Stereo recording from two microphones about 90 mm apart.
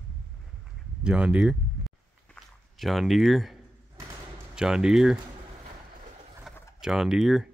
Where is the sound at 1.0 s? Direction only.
10° right (ahead or behind).